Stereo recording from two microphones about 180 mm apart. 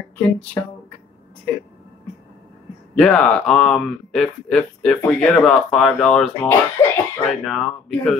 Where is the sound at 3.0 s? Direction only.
5° left (ahead or behind).